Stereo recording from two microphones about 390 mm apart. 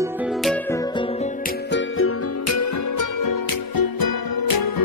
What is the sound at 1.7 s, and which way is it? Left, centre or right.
Music, left.